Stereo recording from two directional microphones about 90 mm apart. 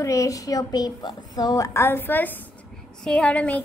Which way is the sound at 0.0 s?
35° left (ahead or behind).